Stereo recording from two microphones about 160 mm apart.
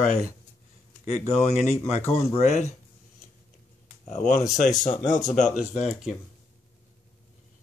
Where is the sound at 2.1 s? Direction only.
40° left (ahead or behind).